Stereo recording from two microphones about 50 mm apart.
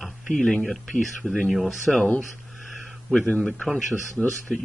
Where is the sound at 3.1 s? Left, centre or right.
Centre.